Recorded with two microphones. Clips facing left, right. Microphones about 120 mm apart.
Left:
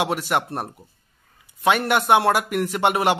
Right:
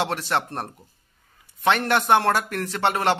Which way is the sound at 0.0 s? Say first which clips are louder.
Left 2 dB; 10° left (ahead or behind).